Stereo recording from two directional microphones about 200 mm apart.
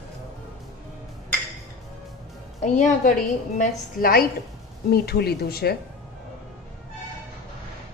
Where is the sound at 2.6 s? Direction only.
35° left (ahead or behind).